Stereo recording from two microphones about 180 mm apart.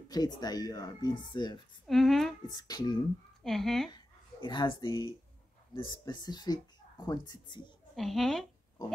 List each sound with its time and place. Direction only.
0.1 s speech: 20° left (ahead or behind)
1.9 s a sound: centre (ahead or behind)
2.4 s speech: 20° left (ahead or behind)
3.4 s speech: centre (ahead or behind)
3.9 s speech: 25° left (ahead or behind)
7.9 s speech: centre (ahead or behind)